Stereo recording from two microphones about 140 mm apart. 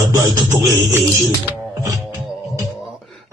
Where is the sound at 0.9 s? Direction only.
20° right (ahead or behind).